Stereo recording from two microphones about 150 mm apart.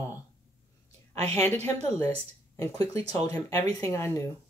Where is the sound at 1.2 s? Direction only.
45° right (ahead or behind).